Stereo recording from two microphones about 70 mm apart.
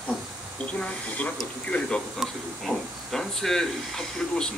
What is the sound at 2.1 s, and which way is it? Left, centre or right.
Speech, centre.